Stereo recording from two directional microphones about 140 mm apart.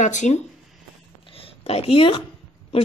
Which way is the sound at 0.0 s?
60° left (ahead or behind).